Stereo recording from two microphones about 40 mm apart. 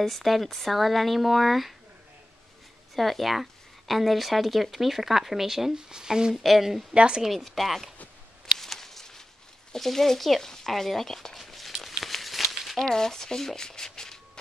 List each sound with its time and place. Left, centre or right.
0.0 s speech: centre
3.0 s speech: centre
6.3 s speech: centre
6.9 s speech: right
7.2 s speech: centre
8.5 s a sound: centre
9.7 s speech: centre
11.3 s a sound: centre
11.8 s crumpling: centre
12.7 s speech: centre